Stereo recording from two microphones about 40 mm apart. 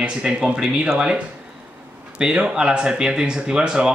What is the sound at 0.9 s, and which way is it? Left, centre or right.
Speech, right.